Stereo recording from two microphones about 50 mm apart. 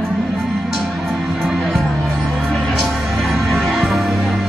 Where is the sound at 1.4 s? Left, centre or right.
Centre.